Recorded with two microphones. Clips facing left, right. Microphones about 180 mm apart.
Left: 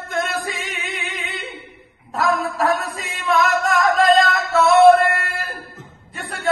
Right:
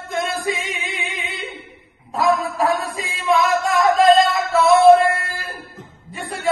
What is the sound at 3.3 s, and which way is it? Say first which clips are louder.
Singing: right 1 dB; centre (ahead or behind).